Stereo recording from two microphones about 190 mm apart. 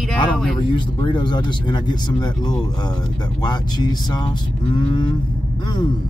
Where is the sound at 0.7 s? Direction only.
25° left (ahead or behind).